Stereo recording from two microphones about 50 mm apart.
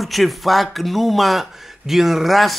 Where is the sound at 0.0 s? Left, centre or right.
Centre.